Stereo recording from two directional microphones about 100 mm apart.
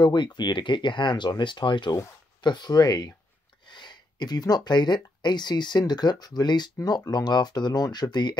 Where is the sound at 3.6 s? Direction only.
50° left (ahead or behind).